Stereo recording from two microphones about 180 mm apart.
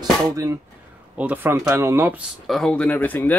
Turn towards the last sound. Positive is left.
turn(degrees=10)  # may be behind; listen again after turning